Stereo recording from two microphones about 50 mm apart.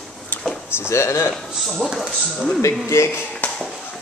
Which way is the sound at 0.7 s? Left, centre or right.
Left.